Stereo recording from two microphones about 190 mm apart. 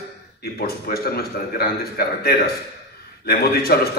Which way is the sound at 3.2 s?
55° left (ahead or behind).